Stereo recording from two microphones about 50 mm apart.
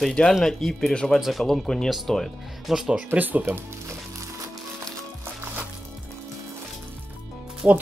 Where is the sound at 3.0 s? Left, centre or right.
Right.